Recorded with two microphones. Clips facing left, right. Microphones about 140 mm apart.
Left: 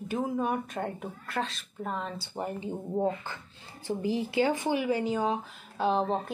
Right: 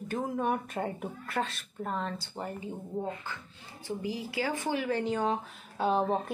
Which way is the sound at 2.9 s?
35° left (ahead or behind).